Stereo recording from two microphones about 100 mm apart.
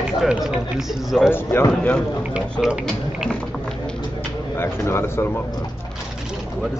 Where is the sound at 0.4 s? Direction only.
5° right (ahead or behind).